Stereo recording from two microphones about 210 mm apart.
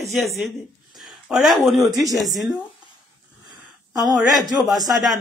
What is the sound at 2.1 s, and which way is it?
Speech, centre (ahead or behind).